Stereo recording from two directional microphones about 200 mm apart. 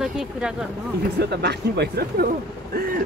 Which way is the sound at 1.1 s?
55° right (ahead or behind).